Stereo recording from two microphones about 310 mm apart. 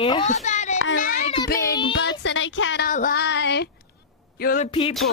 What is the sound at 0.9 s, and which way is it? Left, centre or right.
Child singing, left.